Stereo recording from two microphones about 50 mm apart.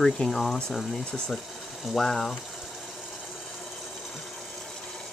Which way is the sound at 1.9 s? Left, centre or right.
Centre.